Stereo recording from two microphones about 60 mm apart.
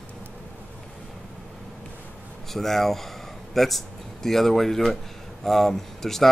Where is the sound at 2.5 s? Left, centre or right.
Centre.